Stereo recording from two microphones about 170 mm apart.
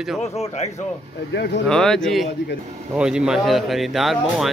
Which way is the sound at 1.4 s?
85° left.